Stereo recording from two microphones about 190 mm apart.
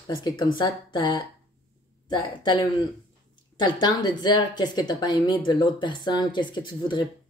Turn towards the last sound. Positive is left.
turn(degrees=25)  # may be behind; listen again after turning